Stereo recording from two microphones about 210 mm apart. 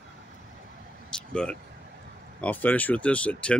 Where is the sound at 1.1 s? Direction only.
5° left (ahead or behind).